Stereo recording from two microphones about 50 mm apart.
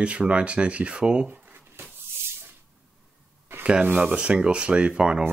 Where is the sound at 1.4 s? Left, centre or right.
Right.